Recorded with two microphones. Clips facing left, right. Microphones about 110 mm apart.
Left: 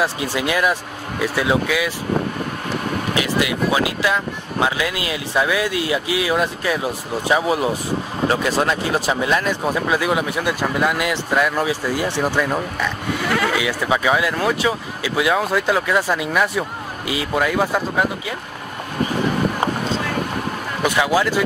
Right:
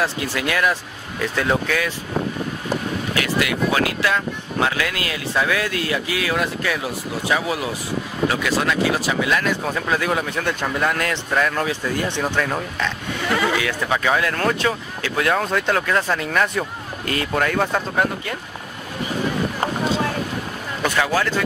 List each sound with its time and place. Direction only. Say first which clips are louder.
0.0 s speech: left 2 dB; 15° left (ahead or behind)
1.2 s speech: left 2 dB; 10° left (ahead or behind)
3.2 s speech: left 1 dB; 20° left (ahead or behind)
9.7 s speech: left 2 dB; 10° left (ahead or behind)
13.3 s a sound: even; centre (ahead or behind)
13.6 s speech: left 2 dB; 10° left (ahead or behind)
20.8 s speech: left 2 dB; 15° left (ahead or behind)